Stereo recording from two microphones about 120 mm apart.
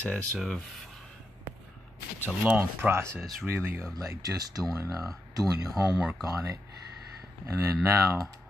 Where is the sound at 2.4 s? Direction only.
15° right (ahead or behind).